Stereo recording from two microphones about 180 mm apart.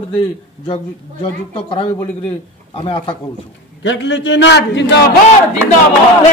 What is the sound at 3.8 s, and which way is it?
A man's voice, 85° left.